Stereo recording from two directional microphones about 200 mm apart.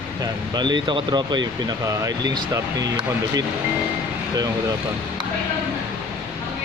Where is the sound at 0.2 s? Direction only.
20° right (ahead or behind).